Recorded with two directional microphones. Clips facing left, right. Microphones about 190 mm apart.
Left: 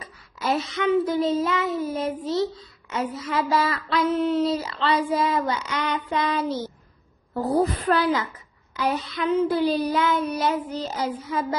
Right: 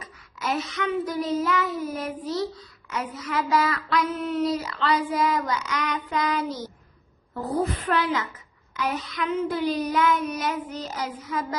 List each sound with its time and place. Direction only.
0.0 s a child's voice: 30° left (ahead or behind)
7.3 s a woman's voice: 40° left (ahead or behind)